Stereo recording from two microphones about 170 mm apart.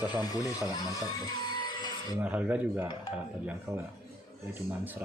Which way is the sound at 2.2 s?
10° right (ahead or behind).